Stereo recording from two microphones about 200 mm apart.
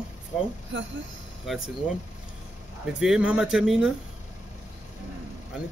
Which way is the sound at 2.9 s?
5° right (ahead or behind).